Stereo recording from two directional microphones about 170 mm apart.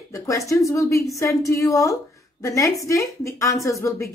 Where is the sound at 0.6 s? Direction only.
20° left (ahead or behind).